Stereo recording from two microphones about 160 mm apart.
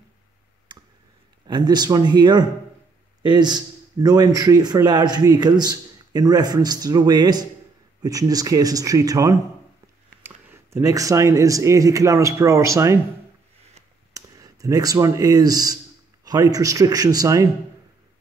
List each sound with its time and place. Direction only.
0.7 s clicking: 25° right (ahead or behind)
1.5 s speech: 25° right (ahead or behind)
14.1 s speech: 20° right (ahead or behind)